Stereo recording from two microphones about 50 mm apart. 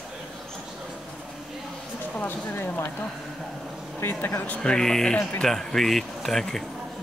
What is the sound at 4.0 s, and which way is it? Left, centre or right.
Speech, left.